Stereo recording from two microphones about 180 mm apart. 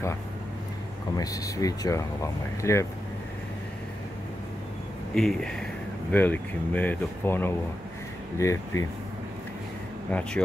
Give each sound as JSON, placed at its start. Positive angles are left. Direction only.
{"t": 1.1, "sound": "speech", "side_deg": 20}
{"t": 5.1, "sound": "speech", "side_deg": 5}
{"t": 10.1, "sound": "speech", "side_deg": 5}